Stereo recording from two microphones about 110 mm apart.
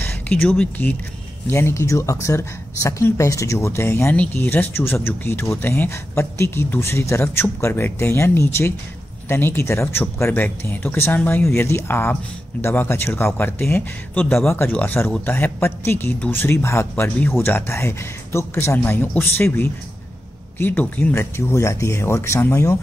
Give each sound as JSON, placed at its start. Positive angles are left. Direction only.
{"t": 0.0, "sound": "speech", "side_deg": 15}
{"t": 1.5, "sound": "speech", "side_deg": 25}
{"t": 21.1, "sound": "speech", "side_deg": 25}